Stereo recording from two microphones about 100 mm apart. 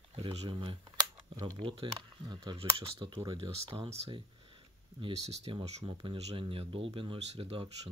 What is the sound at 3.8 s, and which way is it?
Speech, 90° right.